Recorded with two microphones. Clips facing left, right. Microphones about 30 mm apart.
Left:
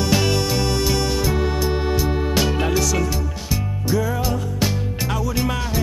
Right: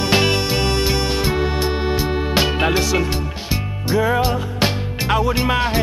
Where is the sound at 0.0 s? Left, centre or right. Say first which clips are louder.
Right 2 dB; right.